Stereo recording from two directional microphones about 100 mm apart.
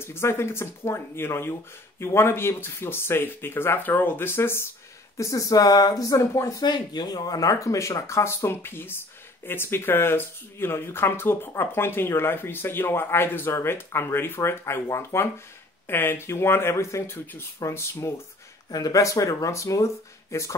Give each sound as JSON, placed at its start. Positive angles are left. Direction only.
{"t": 0.0, "sound": "speech", "side_deg": 25}
{"t": 6.6, "sound": "speech", "side_deg": 45}
{"t": 18.7, "sound": "speech", "side_deg": 40}